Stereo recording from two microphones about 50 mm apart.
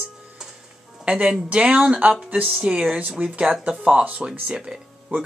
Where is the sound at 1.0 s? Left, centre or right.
Centre.